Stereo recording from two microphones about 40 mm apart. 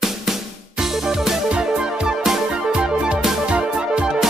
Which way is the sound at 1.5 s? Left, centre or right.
Right.